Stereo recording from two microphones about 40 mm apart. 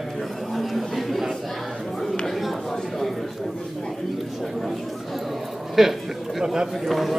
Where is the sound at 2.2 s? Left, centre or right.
Centre.